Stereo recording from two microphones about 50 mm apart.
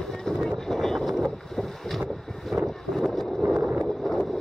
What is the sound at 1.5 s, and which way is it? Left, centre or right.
Boat, centre.